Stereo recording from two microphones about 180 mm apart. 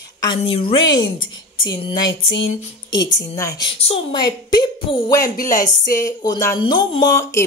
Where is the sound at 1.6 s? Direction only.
25° left (ahead or behind).